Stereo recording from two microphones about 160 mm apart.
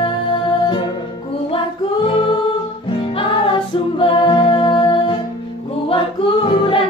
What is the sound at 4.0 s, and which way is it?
Music, 30° left (ahead or behind).